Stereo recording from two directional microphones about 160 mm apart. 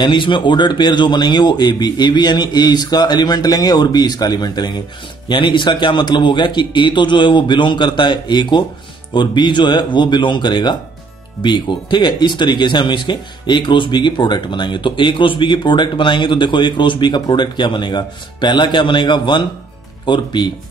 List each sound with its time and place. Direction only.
0.0 s speech: 30° left (ahead or behind)